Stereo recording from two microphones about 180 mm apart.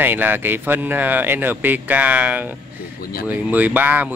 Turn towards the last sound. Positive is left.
turn(degrees=-10)  # may be behind; listen again after turning